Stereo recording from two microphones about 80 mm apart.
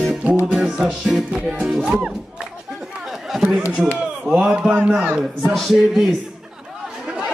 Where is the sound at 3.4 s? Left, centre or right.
Right.